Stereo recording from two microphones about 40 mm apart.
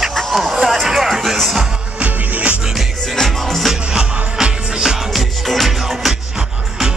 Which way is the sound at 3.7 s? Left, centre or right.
Centre.